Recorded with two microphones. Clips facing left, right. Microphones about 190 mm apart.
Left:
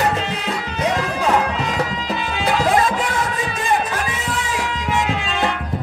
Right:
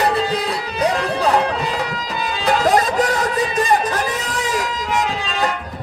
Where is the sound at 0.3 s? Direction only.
35° right (ahead or behind).